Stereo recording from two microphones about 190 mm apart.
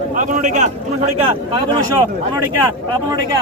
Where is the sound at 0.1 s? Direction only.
45° right (ahead or behind).